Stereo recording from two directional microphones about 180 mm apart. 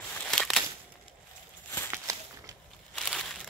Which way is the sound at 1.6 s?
10° left (ahead or behind).